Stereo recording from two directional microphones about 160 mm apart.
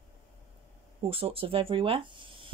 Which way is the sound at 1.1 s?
35° right (ahead or behind).